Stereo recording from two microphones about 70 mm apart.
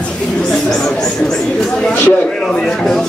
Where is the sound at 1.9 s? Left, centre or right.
Left.